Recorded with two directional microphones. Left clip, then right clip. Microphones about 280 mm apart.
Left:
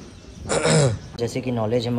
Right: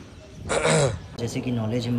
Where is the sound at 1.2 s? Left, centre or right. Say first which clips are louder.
Left 5 dB; centre.